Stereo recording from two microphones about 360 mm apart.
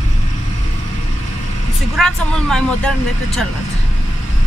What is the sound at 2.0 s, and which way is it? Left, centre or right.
Speech, centre.